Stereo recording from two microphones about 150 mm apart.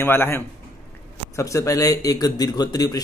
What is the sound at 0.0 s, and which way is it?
A man's voice, 15° left (ahead or behind).